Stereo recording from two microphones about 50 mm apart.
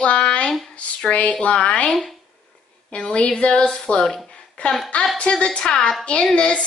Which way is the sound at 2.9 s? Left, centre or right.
Left.